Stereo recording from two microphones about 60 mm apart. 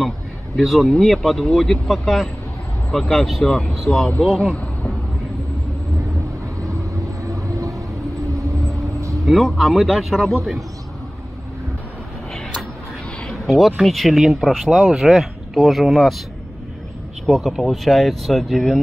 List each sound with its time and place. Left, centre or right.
0.6 s speech: centre
7.2 s vehicle: right
9.2 s speech: centre
13.3 s a sound: centre
13.8 s speech: centre
14.9 s speech: centre
15.5 s speech: centre
17.3 s speech: centre